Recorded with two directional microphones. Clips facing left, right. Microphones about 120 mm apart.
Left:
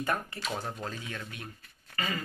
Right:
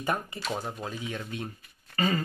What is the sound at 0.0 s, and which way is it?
Speech, 15° right (ahead or behind).